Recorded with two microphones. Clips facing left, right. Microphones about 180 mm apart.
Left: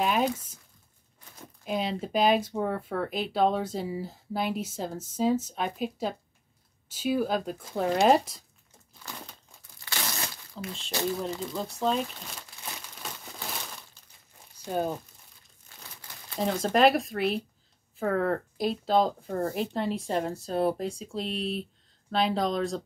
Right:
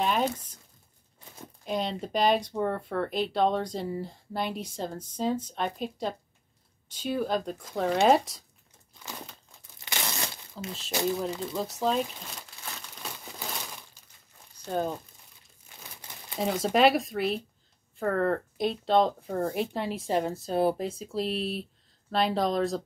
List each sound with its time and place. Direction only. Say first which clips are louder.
0.0 s crumpling: left 1 dB; 5° left (ahead or behind)
1.6 s speech: left 1 dB; 5° left (ahead or behind)
9.8 s a sound: right 1 dB; 20° right (ahead or behind)
10.9 s speech: right 2 dB; 20° right (ahead or behind)
11.8 s speech: even; centre (ahead or behind)
12.6 s crumpling: left 2 dB; 20° right (ahead or behind)
14.6 s speech: even; 10° left (ahead or behind)
16.0 s crumpling: right 2 dB; 20° right (ahead or behind)
16.3 s speech: even; 5° right (ahead or behind)